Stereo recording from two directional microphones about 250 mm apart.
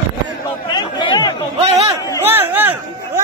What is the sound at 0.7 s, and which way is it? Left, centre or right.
Chatter, centre.